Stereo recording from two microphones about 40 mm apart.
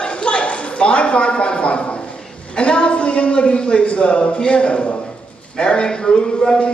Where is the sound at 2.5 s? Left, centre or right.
Left.